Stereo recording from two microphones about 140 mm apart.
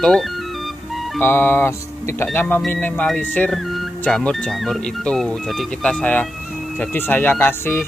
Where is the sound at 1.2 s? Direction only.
15° left (ahead or behind).